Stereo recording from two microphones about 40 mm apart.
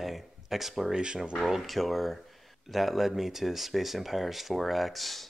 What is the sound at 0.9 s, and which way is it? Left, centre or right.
Speech, centre.